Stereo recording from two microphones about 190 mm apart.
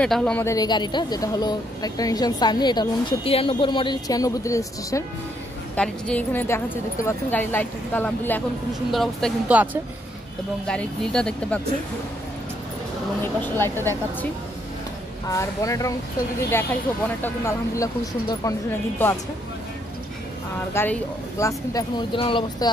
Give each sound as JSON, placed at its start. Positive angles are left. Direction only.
{"t": 0.0, "sound": "speech", "side_deg": 5}
{"t": 10.7, "sound": "speech", "side_deg": 5}
{"t": 13.2, "sound": "speech", "side_deg": 10}
{"t": 15.2, "sound": "speech", "side_deg": 15}
{"t": 17.2, "sound": "speech", "side_deg": 15}
{"t": 20.7, "sound": "speech", "side_deg": 10}